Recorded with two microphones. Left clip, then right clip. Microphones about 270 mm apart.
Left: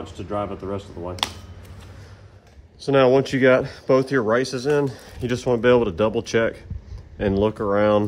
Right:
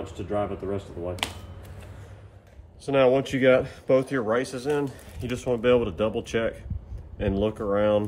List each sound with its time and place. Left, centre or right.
0.3 s speech: centre
2.8 s speech: left